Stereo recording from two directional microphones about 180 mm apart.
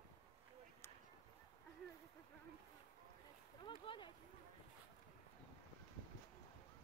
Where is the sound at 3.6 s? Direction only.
25° left (ahead or behind).